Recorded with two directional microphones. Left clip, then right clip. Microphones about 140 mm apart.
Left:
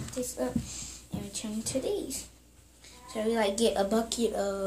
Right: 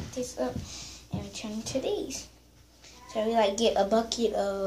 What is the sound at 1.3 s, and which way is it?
Speech, 35° left (ahead or behind).